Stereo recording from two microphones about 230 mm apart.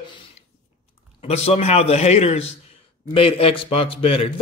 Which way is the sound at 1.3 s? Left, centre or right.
Left.